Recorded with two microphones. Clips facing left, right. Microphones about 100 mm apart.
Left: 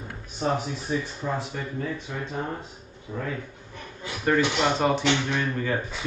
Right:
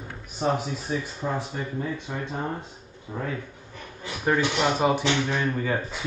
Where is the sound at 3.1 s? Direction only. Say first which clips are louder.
Even; 30° right (ahead or behind).